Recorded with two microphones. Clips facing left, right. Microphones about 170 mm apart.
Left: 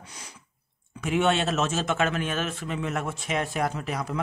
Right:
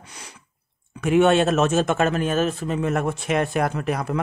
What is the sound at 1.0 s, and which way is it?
A man's voice, 50° right (ahead or behind).